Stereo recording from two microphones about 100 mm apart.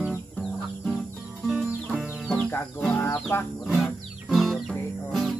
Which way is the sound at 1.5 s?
5° left (ahead or behind).